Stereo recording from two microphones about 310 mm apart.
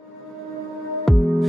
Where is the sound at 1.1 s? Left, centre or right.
Centre.